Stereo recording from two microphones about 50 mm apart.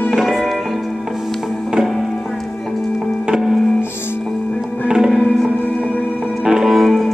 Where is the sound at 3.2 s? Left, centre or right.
Centre.